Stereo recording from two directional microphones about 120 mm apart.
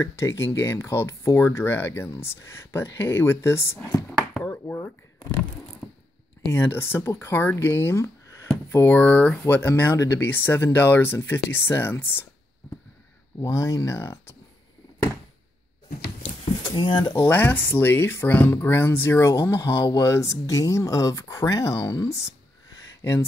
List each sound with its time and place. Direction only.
0.0 s speech: 20° left (ahead or behind)
6.5 s speech: 20° left (ahead or behind)
13.4 s speech: 25° left (ahead or behind)
16.6 s speech: 40° left (ahead or behind)
17.1 s speech: 20° left (ahead or behind)